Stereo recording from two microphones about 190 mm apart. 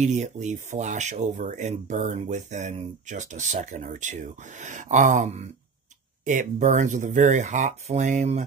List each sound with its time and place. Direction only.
0.0 s speech: 40° right (ahead or behind)